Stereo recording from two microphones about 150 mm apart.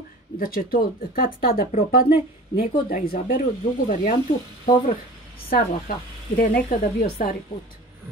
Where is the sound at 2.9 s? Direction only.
70° left (ahead or behind).